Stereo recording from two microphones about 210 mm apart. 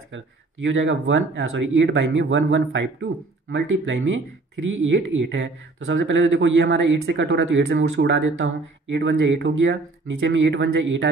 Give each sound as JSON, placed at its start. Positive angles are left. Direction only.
{"t": 0.7, "sound": "speech", "side_deg": -65}